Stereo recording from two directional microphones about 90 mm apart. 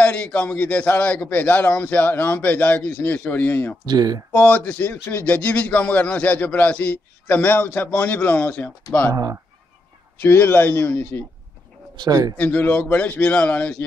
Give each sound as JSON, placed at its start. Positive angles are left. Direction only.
{"t": 0.0, "sound": "a man's voice", "side_deg": 10}
{"t": 3.8, "sound": "speech", "side_deg": -50}
{"t": 4.3, "sound": "a man's voice", "side_deg": 20}
{"t": 9.1, "sound": "speech", "side_deg": -40}
{"t": 10.1, "sound": "a man's voice", "side_deg": 20}
{"t": 12.0, "sound": "speech", "side_deg": -45}
{"t": 12.4, "sound": "a man's voice", "side_deg": 20}